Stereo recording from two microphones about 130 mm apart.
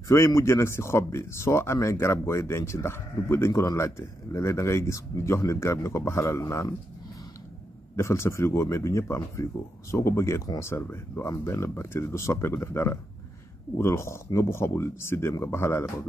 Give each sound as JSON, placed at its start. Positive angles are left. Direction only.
{"t": 0.1, "sound": "speech", "side_deg": 20}
{"t": 7.9, "sound": "speech", "side_deg": 20}